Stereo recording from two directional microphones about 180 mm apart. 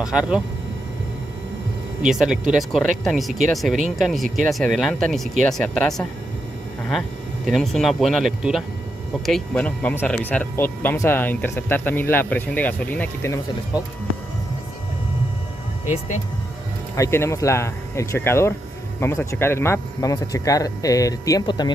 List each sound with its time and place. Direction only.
0.0 s speech: 5° right (ahead or behind)
2.0 s speech: 5° right (ahead or behind)
16.9 s speech: 15° left (ahead or behind)